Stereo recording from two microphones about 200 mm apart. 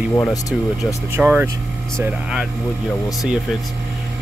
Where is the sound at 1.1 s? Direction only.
10° right (ahead or behind).